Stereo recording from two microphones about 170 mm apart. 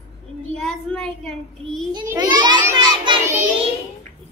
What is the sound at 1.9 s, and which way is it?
Speech, 25° right (ahead or behind).